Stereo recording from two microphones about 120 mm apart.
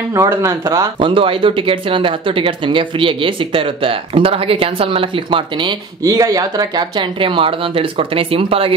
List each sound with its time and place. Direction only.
0.1 s speech: 25° right (ahead or behind)
1.0 s speech: 45° right (ahead or behind)
6.0 s speech: 30° right (ahead or behind); by 8.7 s 50° right (ahead or behind)